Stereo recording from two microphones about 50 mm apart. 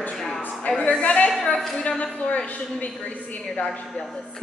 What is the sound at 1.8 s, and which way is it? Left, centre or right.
A woman's voice, left.